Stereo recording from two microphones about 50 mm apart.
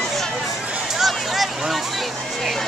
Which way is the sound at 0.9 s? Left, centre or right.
Centre.